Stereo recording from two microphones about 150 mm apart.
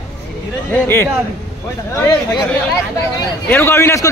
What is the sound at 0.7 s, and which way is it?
Speech, 15° left (ahead or behind).